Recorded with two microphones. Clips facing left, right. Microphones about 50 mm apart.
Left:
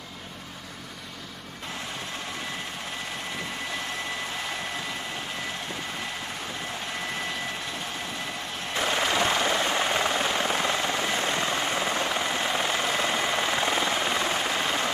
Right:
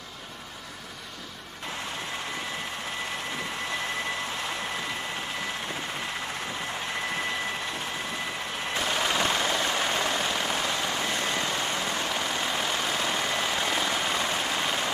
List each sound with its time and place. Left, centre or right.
8.7 s helicopter: centre